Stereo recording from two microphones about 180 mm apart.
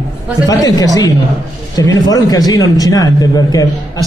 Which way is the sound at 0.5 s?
20° left (ahead or behind).